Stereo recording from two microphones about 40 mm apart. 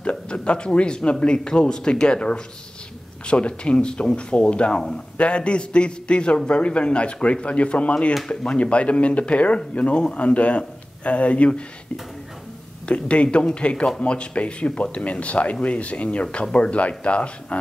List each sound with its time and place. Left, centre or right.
0.0 s a man's voice: left
4.7 s a man's voice: centre
5.1 s a man's voice: left
12.8 s a man's voice: left